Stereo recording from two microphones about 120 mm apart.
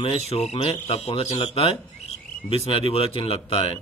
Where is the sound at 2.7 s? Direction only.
50° left (ahead or behind).